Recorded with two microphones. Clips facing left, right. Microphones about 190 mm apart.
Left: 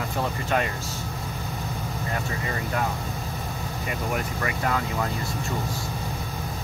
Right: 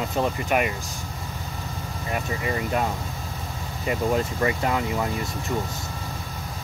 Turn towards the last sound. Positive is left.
turn(degrees=-20)  # may be behind; listen again after turning